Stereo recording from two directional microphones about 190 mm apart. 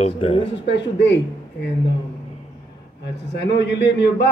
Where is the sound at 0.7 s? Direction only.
70° left (ahead or behind).